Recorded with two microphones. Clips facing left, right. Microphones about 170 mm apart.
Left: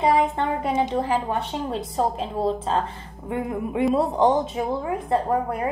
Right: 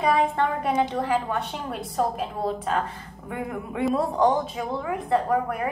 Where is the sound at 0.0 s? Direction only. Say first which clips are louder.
Left 1 dB; 25° left (ahead or behind).